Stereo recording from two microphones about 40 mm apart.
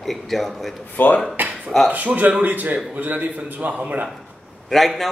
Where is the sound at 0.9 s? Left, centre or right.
Left.